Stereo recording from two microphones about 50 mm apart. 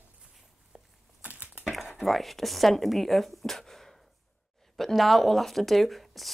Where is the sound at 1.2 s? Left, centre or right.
Right.